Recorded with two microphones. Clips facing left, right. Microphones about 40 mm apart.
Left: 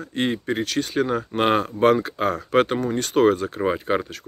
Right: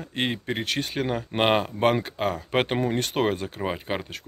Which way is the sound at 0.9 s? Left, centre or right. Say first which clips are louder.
Left 4 dB; centre.